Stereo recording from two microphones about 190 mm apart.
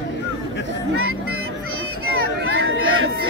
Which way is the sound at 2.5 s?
90° right.